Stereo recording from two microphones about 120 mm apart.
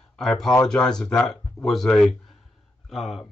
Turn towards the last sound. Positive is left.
turn(degrees=0)  # may be behind; listen again after turning